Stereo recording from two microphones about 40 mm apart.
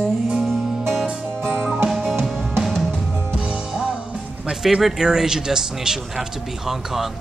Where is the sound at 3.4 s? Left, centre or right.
Right.